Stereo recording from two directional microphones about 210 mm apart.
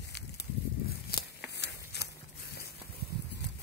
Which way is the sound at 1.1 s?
50° left (ahead or behind).